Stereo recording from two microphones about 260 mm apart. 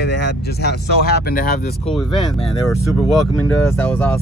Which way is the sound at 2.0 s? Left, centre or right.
Left.